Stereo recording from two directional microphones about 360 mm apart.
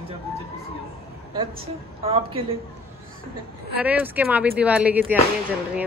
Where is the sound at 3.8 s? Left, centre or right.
Centre.